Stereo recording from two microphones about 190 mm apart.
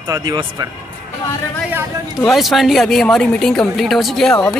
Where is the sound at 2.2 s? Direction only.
Centre (ahead or behind).